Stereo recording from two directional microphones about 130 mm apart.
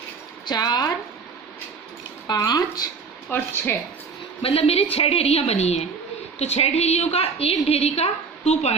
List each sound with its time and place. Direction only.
0.5 s speech: 30° left (ahead or behind)
2.2 s speech: 30° left (ahead or behind)
3.3 s a woman's voice: 15° left (ahead or behind)
4.4 s a woman's voice: 45° left (ahead or behind)